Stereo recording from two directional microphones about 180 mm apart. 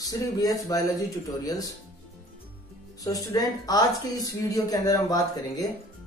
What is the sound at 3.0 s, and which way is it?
Speech, 20° left (ahead or behind).